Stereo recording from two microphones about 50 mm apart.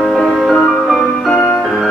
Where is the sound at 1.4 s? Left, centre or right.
Left.